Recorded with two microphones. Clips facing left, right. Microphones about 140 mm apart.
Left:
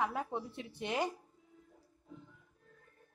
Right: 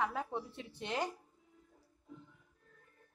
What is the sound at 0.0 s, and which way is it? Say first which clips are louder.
A woman's voice: left 1 dB; 15° left (ahead or behind).